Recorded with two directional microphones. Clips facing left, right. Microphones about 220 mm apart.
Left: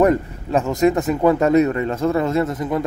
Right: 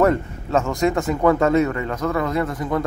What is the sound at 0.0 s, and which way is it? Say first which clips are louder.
A man's voice: left 2 dB; 15° left (ahead or behind).